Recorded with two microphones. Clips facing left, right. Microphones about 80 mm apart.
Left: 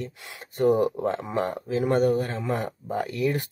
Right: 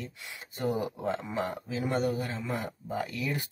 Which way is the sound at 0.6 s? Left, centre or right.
Left.